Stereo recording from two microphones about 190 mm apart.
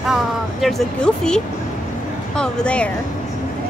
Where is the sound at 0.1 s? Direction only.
Centre (ahead or behind).